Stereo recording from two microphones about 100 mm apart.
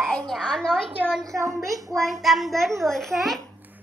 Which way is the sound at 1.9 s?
Centre (ahead or behind).